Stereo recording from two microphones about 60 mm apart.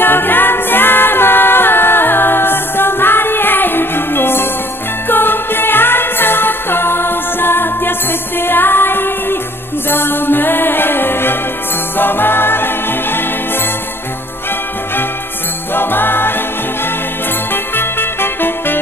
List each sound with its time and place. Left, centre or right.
0.0 s music: left
15.7 s music: left
17.5 s music: left